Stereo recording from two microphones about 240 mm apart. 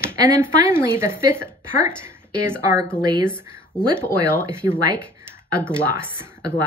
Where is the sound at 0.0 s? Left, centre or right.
Centre.